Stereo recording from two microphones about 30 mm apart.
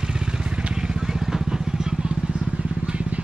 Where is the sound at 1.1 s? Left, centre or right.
Centre.